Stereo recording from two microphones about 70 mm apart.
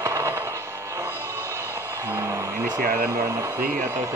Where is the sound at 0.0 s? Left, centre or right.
Right.